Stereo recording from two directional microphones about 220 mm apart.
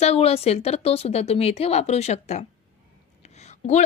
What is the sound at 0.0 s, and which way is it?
A woman's voice, 30° left (ahead or behind).